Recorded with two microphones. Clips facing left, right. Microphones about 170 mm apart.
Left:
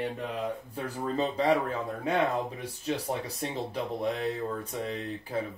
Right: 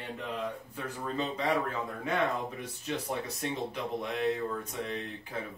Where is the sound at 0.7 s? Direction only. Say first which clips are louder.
Left 5 dB; 35° left (ahead or behind).